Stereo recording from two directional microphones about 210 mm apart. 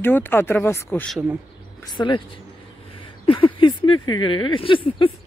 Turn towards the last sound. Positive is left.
turn(degrees=25)  # may be behind; listen again after turning